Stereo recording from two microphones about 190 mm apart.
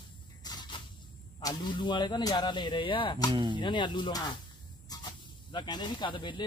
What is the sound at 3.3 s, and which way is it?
Speech, 25° right (ahead or behind).